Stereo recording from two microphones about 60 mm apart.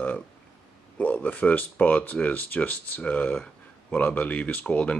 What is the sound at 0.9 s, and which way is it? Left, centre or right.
Speech, left.